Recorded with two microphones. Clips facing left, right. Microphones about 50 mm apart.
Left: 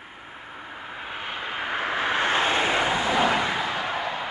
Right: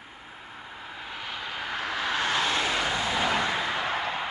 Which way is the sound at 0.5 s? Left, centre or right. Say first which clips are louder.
Left 4 dB; left.